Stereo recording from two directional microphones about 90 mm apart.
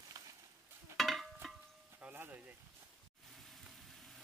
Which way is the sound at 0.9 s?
Centre (ahead or behind).